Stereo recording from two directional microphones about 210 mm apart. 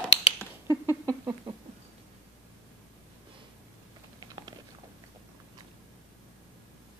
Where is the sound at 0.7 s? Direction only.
15° right (ahead or behind).